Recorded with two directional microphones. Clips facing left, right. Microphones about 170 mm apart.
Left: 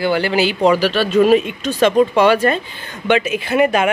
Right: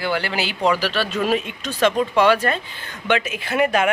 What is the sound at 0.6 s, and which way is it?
Speech, 30° left (ahead or behind).